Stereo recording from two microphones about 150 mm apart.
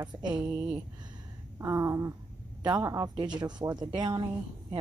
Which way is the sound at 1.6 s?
20° right (ahead or behind).